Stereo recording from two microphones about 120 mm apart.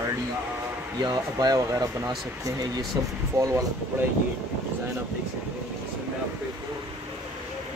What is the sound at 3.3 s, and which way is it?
Speech, 25° right (ahead or behind).